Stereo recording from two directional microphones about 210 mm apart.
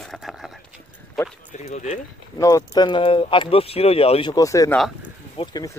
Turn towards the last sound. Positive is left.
turn(degrees=20)  # may be behind; listen again after turning